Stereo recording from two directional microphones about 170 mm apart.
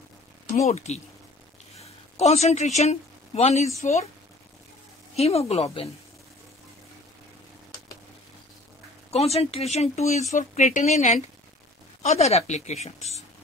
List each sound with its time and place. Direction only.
0.7 s a woman's voice: 40° left (ahead or behind)
5.1 s a woman's voice: 35° left (ahead or behind)
9.1 s a woman's voice: 35° left (ahead or behind)